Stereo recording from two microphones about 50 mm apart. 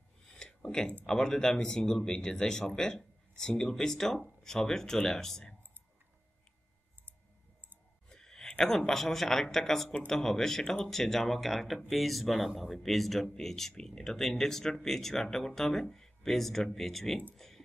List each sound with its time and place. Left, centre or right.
0.7 s speech: centre
8.1 s speech: centre
17.4 s a sound: centre